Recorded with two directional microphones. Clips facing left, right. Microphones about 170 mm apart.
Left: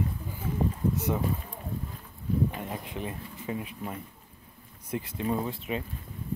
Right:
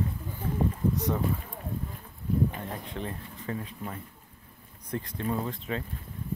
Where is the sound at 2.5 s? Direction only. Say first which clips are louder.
Left 1 dB; 10° left (ahead or behind).